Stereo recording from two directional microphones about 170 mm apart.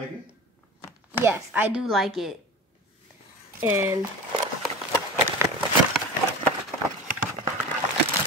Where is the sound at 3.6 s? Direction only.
15° right (ahead or behind).